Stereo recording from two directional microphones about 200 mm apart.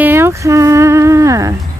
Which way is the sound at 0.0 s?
10° right (ahead or behind).